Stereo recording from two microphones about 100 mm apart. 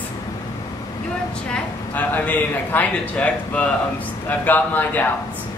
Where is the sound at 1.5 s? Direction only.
15° left (ahead or behind).